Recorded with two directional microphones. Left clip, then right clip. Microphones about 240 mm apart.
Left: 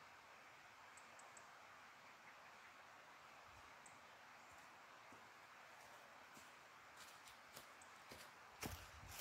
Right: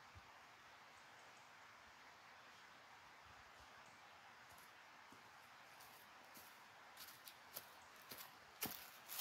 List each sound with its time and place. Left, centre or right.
8.6 s walk: right